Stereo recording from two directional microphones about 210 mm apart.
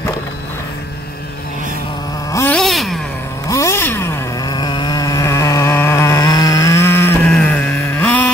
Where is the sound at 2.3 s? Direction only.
15° left (ahead or behind).